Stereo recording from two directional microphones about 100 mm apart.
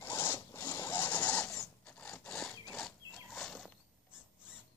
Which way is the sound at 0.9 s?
20° left (ahead or behind).